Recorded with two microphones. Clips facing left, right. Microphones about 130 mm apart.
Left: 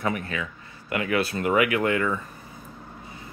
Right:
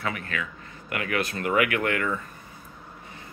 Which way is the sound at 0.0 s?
25° left (ahead or behind).